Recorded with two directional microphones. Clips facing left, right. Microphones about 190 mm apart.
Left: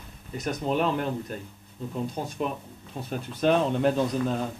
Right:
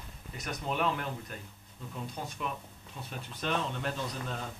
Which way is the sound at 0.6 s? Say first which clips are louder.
Left 6 dB; 35° left (ahead or behind).